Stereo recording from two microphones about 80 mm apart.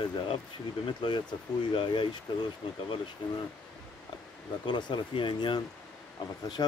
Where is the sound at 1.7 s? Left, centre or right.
Left.